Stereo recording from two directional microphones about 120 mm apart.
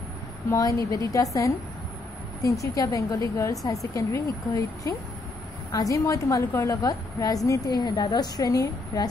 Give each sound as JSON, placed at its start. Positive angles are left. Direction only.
{"t": 0.5, "sound": "a woman's voice", "side_deg": 25}